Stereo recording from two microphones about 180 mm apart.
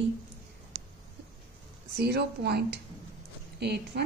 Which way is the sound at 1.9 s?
65° right (ahead or behind).